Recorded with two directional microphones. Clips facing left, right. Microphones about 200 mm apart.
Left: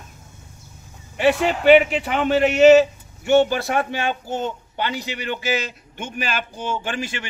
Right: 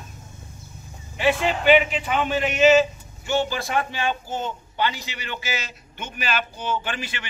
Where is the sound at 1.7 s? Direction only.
60° left (ahead or behind).